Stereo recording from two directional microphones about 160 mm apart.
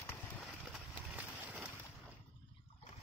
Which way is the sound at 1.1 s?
10° right (ahead or behind).